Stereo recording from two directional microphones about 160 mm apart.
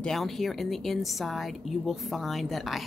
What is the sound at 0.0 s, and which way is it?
Speech, centre (ahead or behind).